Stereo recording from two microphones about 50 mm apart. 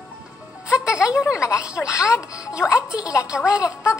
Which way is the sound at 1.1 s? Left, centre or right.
Left.